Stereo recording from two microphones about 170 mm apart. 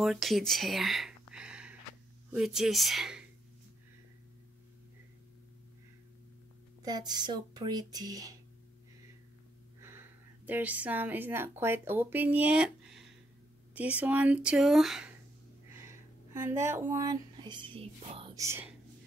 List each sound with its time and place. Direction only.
0.0 s a sound: centre (ahead or behind)
2.3 s speech: centre (ahead or behind)
6.8 s speech: 25° right (ahead or behind)
9.8 s speech: 15° right (ahead or behind)
15.9 s speech: 15° right (ahead or behind); by 18.3 s 35° right (ahead or behind)
18.3 s whispering: 15° right (ahead or behind)